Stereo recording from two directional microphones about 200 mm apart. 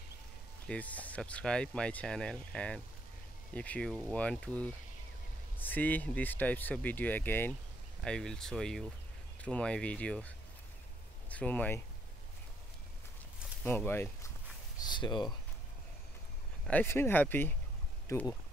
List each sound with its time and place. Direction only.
0.7 s speech: 5° left (ahead or behind)
13.7 s speech: 10° left (ahead or behind)
14.8 s speech: 20° left (ahead or behind)
16.6 s speech: 10° left (ahead or behind)